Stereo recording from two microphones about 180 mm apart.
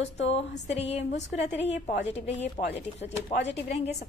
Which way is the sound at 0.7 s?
40° left (ahead or behind).